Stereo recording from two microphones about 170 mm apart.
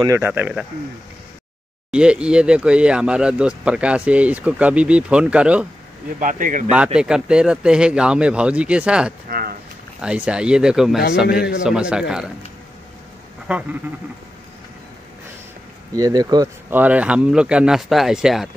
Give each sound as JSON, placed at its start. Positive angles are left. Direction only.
{"t": 0.0, "sound": "speech", "side_deg": -15}
{"t": 1.9, "sound": "speech", "side_deg": -5}
{"t": 6.1, "sound": "speech", "side_deg": -50}
{"t": 7.0, "sound": "speech", "side_deg": -5}
{"t": 9.3, "sound": "speech", "side_deg": -60}
{"t": 10.0, "sound": "speech", "side_deg": -5}
{"t": 15.9, "sound": "speech", "side_deg": -20}
{"t": 16.7, "sound": "speech", "side_deg": -10}